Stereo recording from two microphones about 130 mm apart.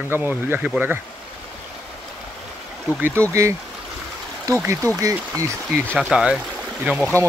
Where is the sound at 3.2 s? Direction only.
20° right (ahead or behind).